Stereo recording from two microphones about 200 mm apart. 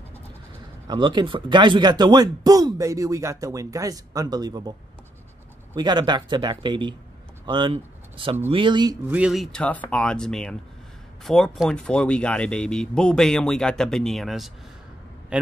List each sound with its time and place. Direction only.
0.8 s speech: 25° right (ahead or behind)
9.1 s speech: 5° right (ahead or behind)